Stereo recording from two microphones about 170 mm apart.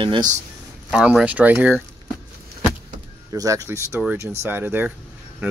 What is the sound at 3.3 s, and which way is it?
Speech, 20° right (ahead or behind).